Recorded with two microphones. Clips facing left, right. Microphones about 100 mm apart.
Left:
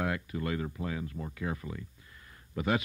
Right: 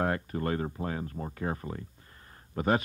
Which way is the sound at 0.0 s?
40° right (ahead or behind).